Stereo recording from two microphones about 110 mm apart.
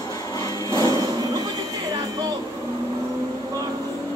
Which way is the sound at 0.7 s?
30° left (ahead or behind).